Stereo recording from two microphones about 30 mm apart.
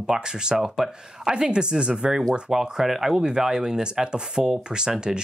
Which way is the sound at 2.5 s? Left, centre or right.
Centre.